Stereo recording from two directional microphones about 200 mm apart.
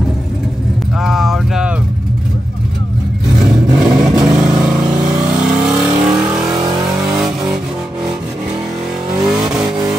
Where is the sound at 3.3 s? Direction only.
5° right (ahead or behind).